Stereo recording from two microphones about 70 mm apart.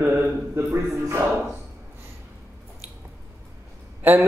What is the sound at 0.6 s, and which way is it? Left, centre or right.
Speech, right.